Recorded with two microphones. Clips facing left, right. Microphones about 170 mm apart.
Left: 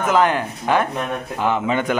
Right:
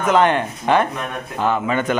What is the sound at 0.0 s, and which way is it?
Speech, 5° left (ahead or behind).